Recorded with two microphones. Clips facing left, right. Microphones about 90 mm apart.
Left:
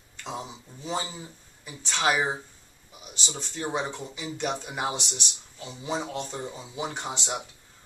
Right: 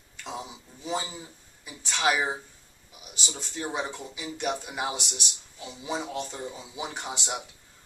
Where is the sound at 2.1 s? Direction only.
15° left (ahead or behind).